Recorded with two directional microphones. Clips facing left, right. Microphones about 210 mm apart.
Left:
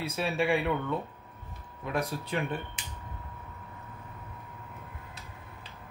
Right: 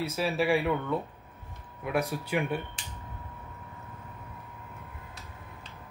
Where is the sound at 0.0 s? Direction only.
Centre (ahead or behind).